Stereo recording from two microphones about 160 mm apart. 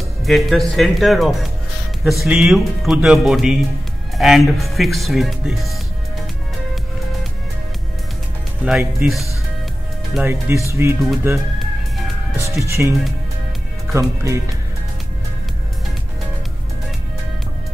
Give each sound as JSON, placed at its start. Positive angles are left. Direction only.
{"t": 0.2, "sound": "a man's voice", "side_deg": 0}
{"t": 8.6, "sound": "a man's voice", "side_deg": 0}
{"t": 10.1, "sound": "speech", "side_deg": -15}
{"t": 12.6, "sound": "speech", "side_deg": -20}
{"t": 13.9, "sound": "speech", "side_deg": -20}